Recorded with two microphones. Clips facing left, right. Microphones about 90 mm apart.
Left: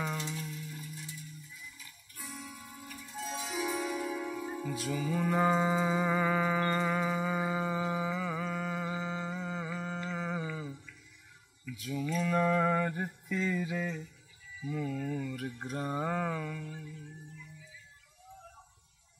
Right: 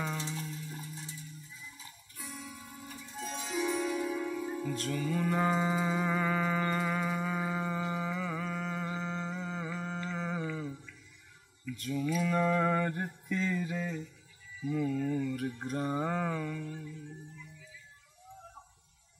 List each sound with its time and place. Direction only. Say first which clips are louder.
0.2 s music: even; 30° right (ahead or behind)
2.1 s music: even; centre (ahead or behind)
9.9 s mantra: even; centre (ahead or behind)